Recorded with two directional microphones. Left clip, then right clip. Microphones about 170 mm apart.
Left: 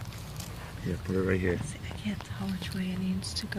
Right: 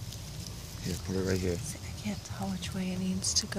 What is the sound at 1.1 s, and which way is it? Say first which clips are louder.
Speech: left 3 dB; 5° right (ahead or behind).